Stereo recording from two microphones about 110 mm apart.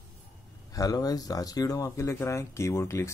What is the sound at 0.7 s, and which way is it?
Speech, 35° left (ahead or behind).